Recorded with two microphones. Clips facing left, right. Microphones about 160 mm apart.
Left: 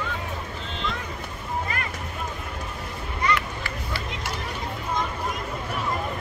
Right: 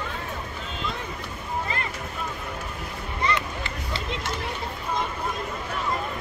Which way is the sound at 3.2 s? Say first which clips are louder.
Left 1 dB; 20° right (ahead or behind).